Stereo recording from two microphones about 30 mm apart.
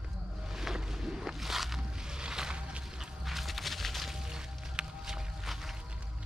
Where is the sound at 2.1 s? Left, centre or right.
Right.